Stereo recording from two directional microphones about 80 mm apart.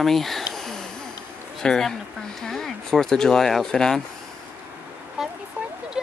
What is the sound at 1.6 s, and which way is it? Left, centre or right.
Speech, centre.